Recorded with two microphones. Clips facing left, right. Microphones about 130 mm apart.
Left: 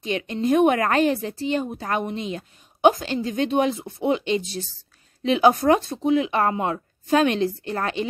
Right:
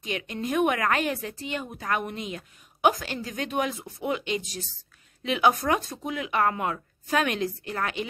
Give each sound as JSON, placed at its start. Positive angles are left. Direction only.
{"t": 0.0, "sound": "a woman's voice", "side_deg": 30}